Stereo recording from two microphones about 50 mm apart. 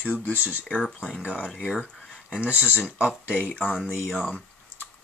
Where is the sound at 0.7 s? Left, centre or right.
Centre.